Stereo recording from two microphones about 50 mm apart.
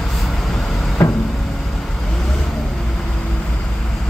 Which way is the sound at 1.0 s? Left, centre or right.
Left.